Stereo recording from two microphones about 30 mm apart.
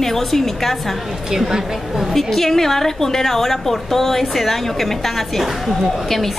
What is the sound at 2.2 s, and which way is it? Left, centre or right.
A woman's voice, centre.